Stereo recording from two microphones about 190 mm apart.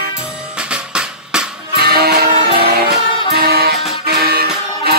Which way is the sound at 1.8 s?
55° right (ahead or behind).